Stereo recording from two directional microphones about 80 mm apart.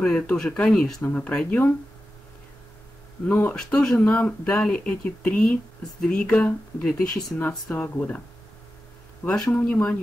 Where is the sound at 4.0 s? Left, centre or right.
Centre.